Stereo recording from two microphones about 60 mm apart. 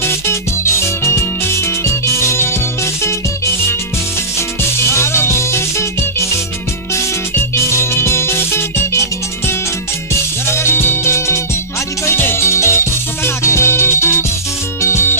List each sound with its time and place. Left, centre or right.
0.8 s music: left
4.4 s music: left
7.5 s music: left